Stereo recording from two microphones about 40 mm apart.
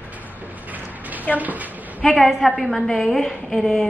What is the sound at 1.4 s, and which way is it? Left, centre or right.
Speech, right.